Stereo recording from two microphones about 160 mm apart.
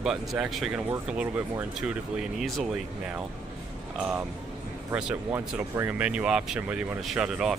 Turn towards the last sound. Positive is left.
turn(degrees=-5)  # may be behind; listen again after turning